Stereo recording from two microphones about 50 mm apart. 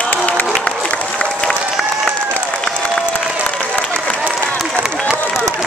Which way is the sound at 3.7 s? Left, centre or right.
Left.